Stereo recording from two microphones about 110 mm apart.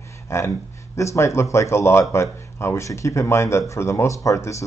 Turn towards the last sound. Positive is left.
turn(degrees=30)  # may be behind; listen again after turning